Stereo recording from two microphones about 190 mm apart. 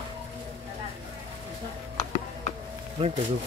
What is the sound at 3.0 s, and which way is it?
Speech, 30° right (ahead or behind).